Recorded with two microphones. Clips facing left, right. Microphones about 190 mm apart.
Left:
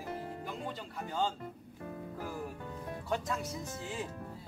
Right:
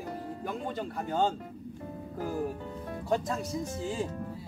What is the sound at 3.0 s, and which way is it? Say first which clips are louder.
Speech: right 6 dB; 35° right (ahead or behind).